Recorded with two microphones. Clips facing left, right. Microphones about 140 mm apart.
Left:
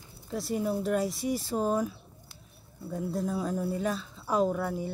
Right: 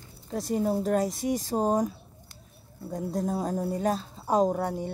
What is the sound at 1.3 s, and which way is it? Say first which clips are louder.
Speech: right 3 dB; 40° right (ahead or behind).